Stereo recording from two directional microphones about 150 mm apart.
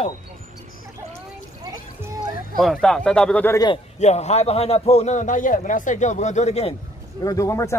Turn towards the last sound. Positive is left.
turn(degrees=20)  # may be behind; listen again after turning